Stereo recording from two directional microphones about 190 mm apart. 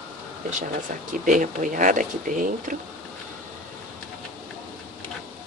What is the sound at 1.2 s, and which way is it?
Speech, 45° right (ahead or behind).